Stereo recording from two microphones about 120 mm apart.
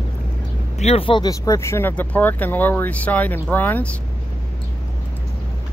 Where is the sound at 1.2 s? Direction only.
30° left (ahead or behind); by 3.9 s 15° left (ahead or behind).